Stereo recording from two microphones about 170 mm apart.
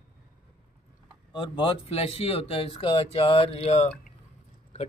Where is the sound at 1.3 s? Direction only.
30° left (ahead or behind).